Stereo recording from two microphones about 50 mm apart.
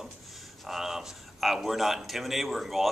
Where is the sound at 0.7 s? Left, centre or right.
Centre.